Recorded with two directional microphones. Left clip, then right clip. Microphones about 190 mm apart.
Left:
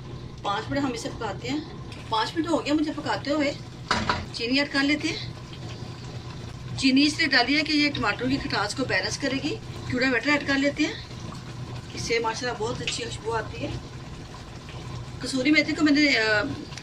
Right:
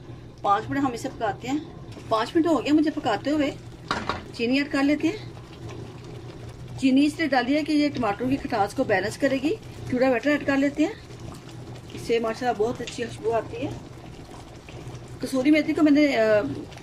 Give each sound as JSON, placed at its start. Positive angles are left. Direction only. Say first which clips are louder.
{"t": 0.5, "sound": "a woman's voice", "louder": "right 4 dB", "side_deg": -55}
{"t": 6.8, "sound": "a woman's voice", "louder": "left 1 dB", "side_deg": -45}
{"t": 12.1, "sound": "a woman's voice", "louder": "right 2 dB", "side_deg": -50}
{"t": 15.2, "sound": "a woman's voice", "louder": "right 1 dB", "side_deg": -50}